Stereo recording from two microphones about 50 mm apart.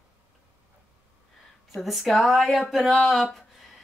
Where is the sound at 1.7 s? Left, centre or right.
Centre.